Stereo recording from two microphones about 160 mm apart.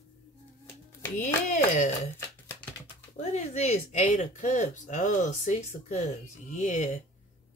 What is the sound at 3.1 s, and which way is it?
Speech, 45° left (ahead or behind).